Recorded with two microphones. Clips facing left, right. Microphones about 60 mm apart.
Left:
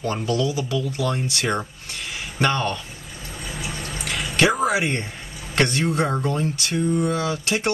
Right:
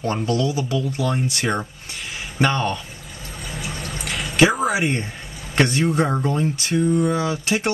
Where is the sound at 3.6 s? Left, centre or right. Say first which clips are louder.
Right 1 dB; centre.